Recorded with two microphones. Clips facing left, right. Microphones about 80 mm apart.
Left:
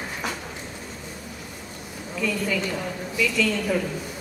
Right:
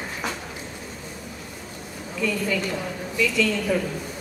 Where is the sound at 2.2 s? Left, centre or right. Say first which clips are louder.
Right 1 dB; centre.